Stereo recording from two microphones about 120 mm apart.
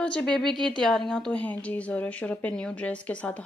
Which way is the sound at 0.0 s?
10° left (ahead or behind).